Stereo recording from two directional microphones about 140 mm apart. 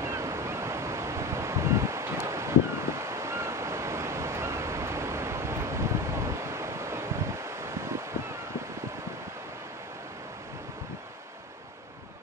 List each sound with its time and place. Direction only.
0.0 s waves: 20° right (ahead or behind)